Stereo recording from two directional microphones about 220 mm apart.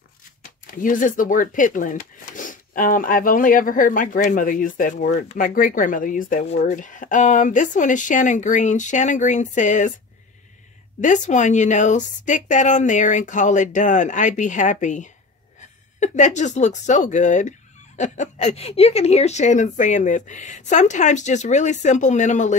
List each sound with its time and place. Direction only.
0.4 s speech: 35° left (ahead or behind)
11.0 s speech: 35° left (ahead or behind)